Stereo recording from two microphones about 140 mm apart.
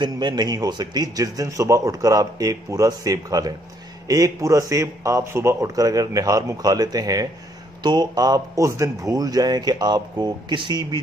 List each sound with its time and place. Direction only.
0.0 s a man's voice: 30° right (ahead or behind)